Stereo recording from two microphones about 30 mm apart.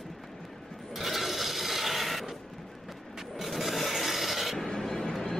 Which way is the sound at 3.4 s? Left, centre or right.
Centre.